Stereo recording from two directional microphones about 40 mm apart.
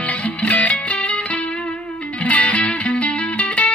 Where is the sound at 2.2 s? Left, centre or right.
Left.